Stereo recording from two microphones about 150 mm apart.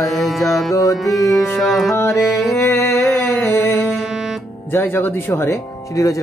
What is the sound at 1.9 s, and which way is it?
Speech, 20° left (ahead or behind).